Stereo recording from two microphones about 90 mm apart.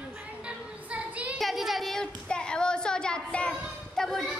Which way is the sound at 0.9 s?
15° right (ahead or behind).